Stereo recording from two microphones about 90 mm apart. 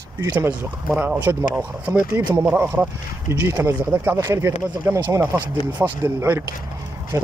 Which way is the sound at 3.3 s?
35° right (ahead or behind).